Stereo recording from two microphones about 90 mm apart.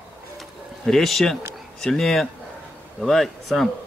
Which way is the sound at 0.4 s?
5° left (ahead or behind).